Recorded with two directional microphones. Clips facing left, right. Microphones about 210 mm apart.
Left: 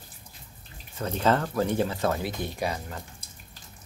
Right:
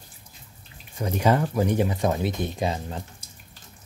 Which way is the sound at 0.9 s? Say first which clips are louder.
Right 2 dB; 15° right (ahead or behind).